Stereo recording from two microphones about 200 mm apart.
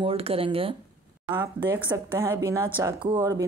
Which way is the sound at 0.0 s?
30° right (ahead or behind).